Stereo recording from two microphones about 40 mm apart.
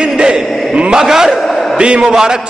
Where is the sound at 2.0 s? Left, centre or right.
Centre.